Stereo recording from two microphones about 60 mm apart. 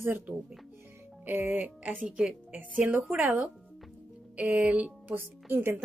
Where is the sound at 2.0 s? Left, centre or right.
Centre.